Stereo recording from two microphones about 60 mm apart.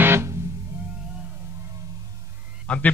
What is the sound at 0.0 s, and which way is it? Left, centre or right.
Music, right.